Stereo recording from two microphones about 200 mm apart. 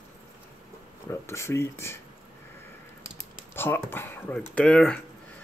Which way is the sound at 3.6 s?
10° left (ahead or behind).